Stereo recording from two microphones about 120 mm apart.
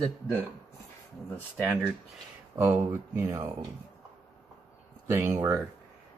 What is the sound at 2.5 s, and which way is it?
Speech, 20° right (ahead or behind).